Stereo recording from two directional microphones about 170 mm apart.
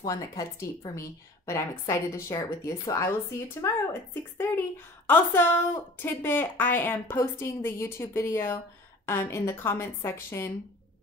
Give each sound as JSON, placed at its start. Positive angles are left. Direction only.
{"t": 0.0, "sound": "a woman's voice", "side_deg": 20}